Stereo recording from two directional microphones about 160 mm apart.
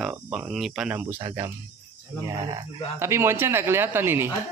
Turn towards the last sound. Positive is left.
turn(degrees=-15)  # may be behind; listen again after turning